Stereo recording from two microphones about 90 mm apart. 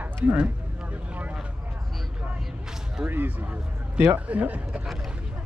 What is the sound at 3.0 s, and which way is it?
Speech, 20° right (ahead or behind).